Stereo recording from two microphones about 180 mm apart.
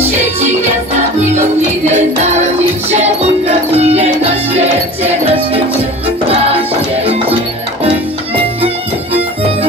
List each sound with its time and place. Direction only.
1.9 s music: 40° right (ahead or behind)
8.6 s music: 35° right (ahead or behind)